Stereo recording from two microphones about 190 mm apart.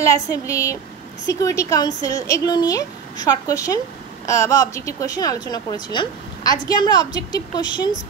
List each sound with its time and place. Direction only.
0.1 s a woman's voice: 15° left (ahead or behind)